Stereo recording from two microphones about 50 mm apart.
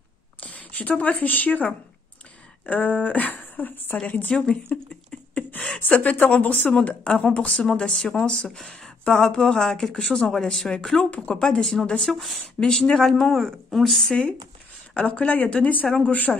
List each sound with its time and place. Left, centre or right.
0.4 s speech: left
6.7 s speech: centre
8.0 s speech: centre
12.0 s speech: centre
12.5 s speech: centre
15.0 s speech: left